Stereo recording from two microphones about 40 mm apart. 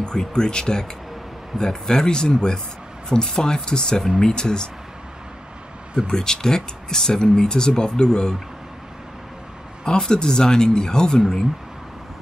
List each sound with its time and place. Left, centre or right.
0.0 s speech: centre
6.0 s speech: centre
9.8 s speech: centre